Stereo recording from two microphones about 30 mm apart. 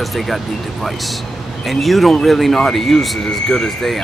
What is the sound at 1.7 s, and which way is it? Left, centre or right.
Speech, centre.